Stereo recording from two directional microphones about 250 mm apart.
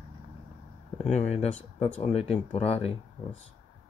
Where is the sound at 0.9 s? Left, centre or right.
Left.